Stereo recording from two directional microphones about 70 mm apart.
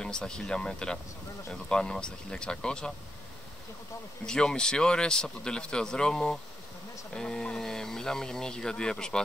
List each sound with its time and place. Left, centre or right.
0.0 s speech: centre
4.3 s speech: centre